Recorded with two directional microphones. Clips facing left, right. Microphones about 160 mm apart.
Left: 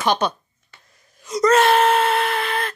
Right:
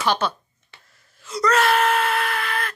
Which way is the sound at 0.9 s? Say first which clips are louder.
Left 4 dB; 15° left (ahead or behind).